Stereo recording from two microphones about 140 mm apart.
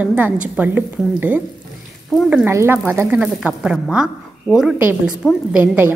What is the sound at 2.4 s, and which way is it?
Speech, 15° right (ahead or behind).